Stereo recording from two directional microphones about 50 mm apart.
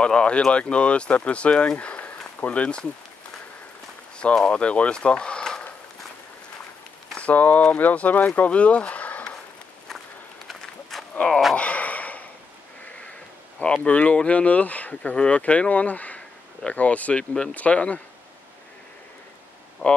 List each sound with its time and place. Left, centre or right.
0.0 s speech: centre
4.5 s speech: left
7.2 s speech: left
10.5 s run: centre
11.1 s speech: centre
11.5 s gasp: left
13.8 s speech: left
17.3 s speech: centre
17.6 s speech: left
19.8 s speech: left